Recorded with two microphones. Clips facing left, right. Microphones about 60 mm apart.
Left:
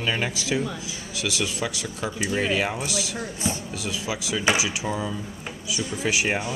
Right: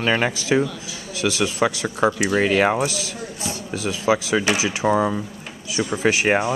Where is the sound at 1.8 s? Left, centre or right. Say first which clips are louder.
Right 9 dB; right.